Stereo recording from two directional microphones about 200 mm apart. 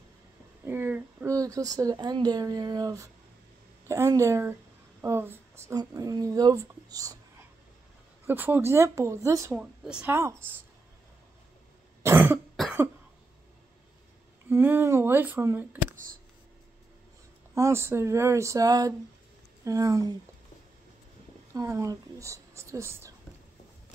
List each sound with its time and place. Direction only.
0.7 s speech: 10° right (ahead or behind)
8.3 s speech: 10° right (ahead or behind)
12.0 s cough: 10° right (ahead or behind)
14.5 s speech: 10° right (ahead or behind)
17.6 s speech: 15° right (ahead or behind)
21.5 s speech: 15° right (ahead or behind)